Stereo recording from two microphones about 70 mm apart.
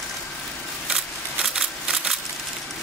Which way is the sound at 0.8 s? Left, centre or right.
Centre.